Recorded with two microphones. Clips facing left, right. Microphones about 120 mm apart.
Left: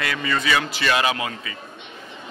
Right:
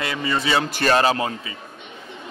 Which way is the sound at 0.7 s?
45° right (ahead or behind).